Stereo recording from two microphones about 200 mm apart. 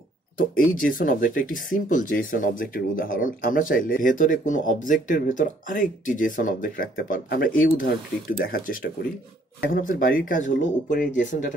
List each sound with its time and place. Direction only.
0.4 s speech: 45° left (ahead or behind)